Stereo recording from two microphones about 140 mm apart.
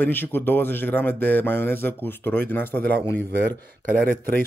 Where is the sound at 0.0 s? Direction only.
15° left (ahead or behind).